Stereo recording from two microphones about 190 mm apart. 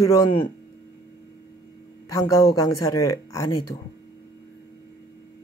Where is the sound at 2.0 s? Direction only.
15° left (ahead or behind).